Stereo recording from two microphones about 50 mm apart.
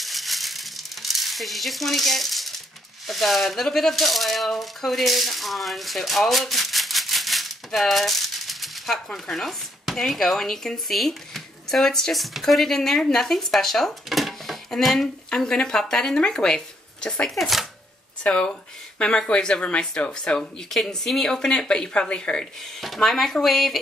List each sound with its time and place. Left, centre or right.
0.0 s frying: centre
3.1 s speech: centre
17.4 s speech: centre
18.2 s speech: left
20.7 s speech: centre
22.8 s speech: centre